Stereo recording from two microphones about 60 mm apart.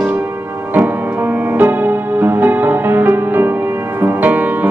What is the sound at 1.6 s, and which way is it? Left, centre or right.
Music, right.